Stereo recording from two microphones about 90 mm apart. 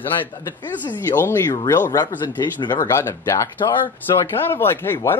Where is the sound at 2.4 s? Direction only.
55° left (ahead or behind).